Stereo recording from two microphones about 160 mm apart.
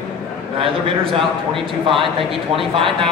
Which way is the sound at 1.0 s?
35° right (ahead or behind).